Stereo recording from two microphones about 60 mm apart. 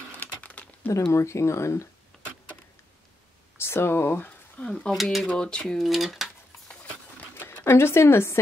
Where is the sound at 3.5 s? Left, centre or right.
Left.